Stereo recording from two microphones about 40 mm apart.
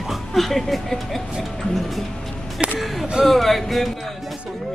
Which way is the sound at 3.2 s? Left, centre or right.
Centre.